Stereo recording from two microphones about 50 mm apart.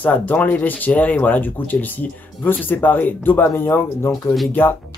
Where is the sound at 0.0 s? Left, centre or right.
Left.